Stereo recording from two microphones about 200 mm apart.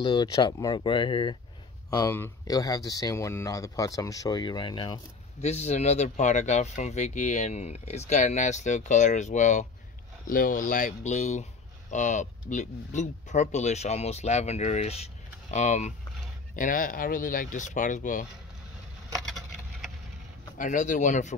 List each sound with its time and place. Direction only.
0.0 s speech: 20° left (ahead or behind)
2.0 s speech: 15° left (ahead or behind)
5.4 s speech: 35° left (ahead or behind)
20.5 s speech: 40° left (ahead or behind)